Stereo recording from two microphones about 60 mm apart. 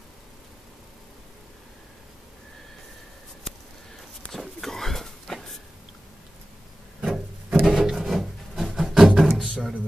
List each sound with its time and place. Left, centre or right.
4.3 s a sound: centre
7.0 s wood: centre
7.6 s wood: centre
9.4 s music: centre